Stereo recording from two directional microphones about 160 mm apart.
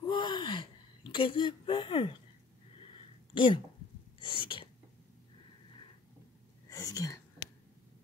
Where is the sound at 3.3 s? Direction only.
30° left (ahead or behind).